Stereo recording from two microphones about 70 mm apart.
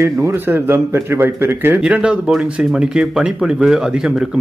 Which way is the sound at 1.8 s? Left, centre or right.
Centre.